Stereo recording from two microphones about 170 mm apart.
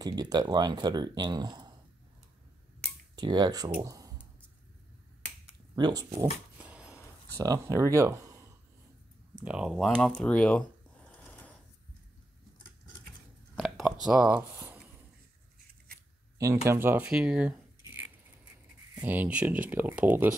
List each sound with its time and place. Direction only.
0.0 s speech: 25° right (ahead or behind)
3.2 s speech: 25° right (ahead or behind)
5.8 s speech: 25° right (ahead or behind)
6.6 s a sound: 5° right (ahead or behind)
7.3 s speech: 20° right (ahead or behind)
9.3 s typing: 5° right (ahead or behind); by 11.5 s 10° left (ahead or behind)
13.6 s a sound: centre (ahead or behind)
16.3 s speech: 15° right (ahead or behind)
18.9 s speech: 10° right (ahead or behind)